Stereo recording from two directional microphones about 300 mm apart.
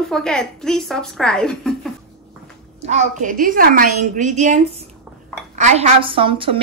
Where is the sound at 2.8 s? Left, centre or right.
Right.